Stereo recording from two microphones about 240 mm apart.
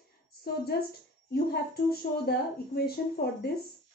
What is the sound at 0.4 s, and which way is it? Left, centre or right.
A woman's voice, left.